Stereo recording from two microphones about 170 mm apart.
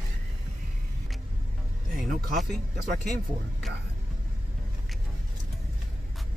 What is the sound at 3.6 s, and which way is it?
Music, centre (ahead or behind).